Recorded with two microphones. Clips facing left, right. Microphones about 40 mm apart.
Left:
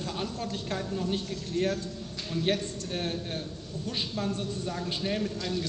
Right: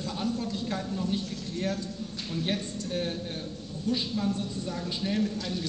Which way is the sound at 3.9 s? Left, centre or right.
Left.